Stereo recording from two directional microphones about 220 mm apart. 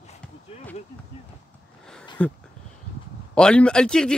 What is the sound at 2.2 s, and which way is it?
A man's voice, 5° left (ahead or behind).